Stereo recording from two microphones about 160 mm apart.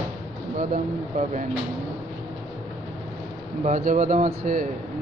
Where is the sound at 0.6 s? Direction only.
50° right (ahead or behind).